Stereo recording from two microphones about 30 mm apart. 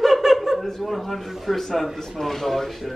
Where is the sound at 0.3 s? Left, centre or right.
Centre.